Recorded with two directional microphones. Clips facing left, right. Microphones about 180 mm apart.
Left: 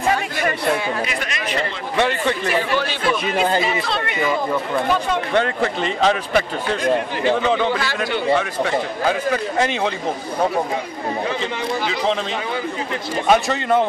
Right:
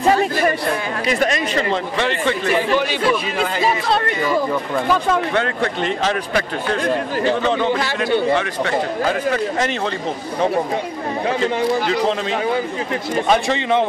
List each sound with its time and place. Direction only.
1.0 s speech: 35° right (ahead or behind)
3.6 s speech: 40° right (ahead or behind)
5.6 s speech: centre (ahead or behind)
7.5 s speech: 10° right (ahead or behind)
11.9 s speech: 5° right (ahead or behind)